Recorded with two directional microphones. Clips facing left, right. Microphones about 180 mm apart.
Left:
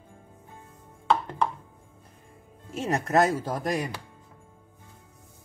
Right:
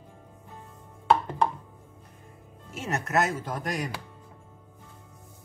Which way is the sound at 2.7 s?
35° left (ahead or behind).